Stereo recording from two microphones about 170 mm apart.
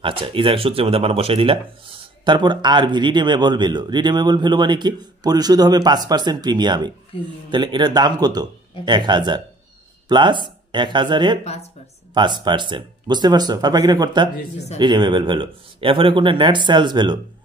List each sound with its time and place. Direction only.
0.0 s a man's voice: 30° right (ahead or behind)